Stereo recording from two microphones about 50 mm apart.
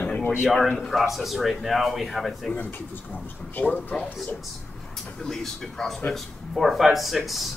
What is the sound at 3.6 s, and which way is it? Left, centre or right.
Speech, left.